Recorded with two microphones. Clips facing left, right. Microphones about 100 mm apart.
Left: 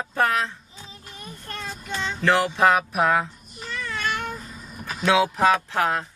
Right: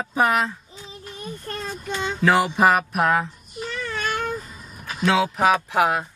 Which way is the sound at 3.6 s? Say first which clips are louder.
Right 1 dB; 45° right (ahead or behind).